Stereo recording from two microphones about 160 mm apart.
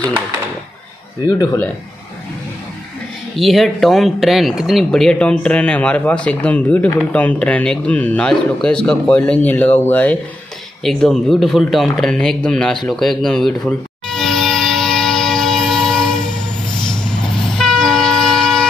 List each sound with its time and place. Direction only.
1.2 s speech: 20° left (ahead or behind)
3.3 s speech: centre (ahead or behind)
10.8 s a sound: centre (ahead or behind)
16.8 s train: 5° left (ahead or behind)